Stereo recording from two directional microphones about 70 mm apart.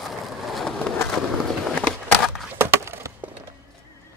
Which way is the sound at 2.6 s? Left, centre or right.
Right.